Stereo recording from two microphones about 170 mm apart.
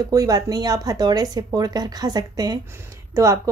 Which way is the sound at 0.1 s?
20° right (ahead or behind).